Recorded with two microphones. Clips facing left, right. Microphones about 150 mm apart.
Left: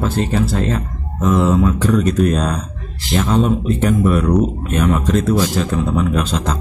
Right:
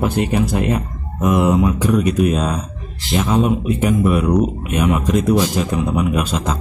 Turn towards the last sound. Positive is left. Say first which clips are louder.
# even
turn(degrees=-10)  # may be behind; listen again after turning